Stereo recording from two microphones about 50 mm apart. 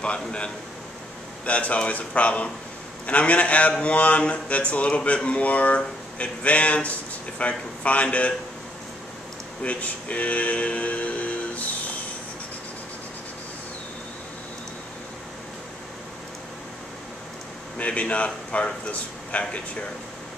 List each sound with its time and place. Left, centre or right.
0.0 s speech: left
9.6 s speech: left
17.7 s speech: left